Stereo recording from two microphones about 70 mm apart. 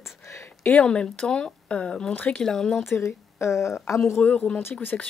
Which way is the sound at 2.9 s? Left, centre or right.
Left.